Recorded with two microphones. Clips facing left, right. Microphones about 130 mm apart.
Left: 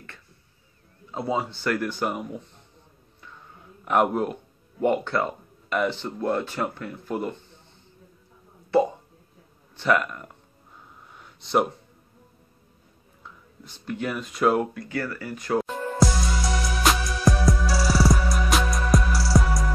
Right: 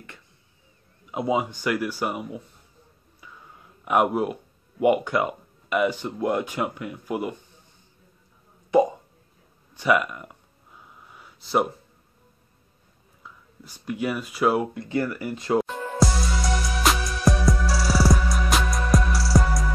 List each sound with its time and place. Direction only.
1.1 s speech: 15° right (ahead or behind)
3.8 s speech: 5° right (ahead or behind)
8.7 s a sound: 15° right (ahead or behind)
9.8 s speech: 10° right (ahead or behind)
11.1 s a sound: 5° right (ahead or behind)
13.2 s speech: 10° right (ahead or behind)
14.7 s speech: 25° right (ahead or behind)
15.6 s music: centre (ahead or behind)